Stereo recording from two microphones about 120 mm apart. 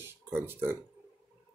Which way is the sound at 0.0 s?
20° right (ahead or behind).